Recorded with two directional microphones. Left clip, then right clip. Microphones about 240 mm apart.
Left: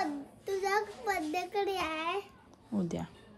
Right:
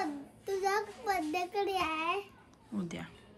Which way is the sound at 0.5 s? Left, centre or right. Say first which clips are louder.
Left 1 dB; centre.